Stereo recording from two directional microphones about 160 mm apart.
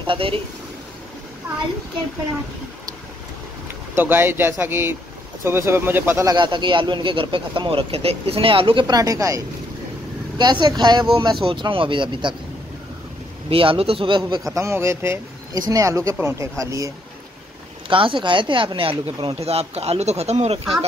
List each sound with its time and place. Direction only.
0.0 s a man's voice: 35° right (ahead or behind)
1.5 s speech: 10° right (ahead or behind)
3.6 s speech: 15° right (ahead or behind)
6.3 s speech: 30° right (ahead or behind)
13.5 s speech: 35° right (ahead or behind)
14.5 s speech: 15° right (ahead or behind)
17.8 s speech: 30° right (ahead or behind)